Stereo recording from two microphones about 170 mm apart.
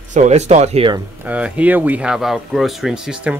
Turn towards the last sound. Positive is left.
turn(degrees=-5)  # may be behind; listen again after turning